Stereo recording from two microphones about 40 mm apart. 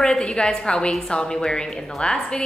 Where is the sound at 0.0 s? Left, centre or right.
Left.